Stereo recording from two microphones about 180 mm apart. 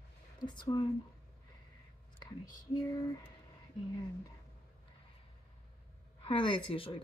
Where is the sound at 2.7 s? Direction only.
20° left (ahead or behind).